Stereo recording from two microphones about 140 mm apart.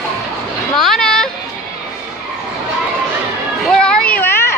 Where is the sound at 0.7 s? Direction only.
5° left (ahead or behind).